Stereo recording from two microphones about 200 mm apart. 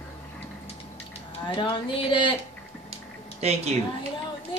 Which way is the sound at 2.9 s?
30° right (ahead or behind).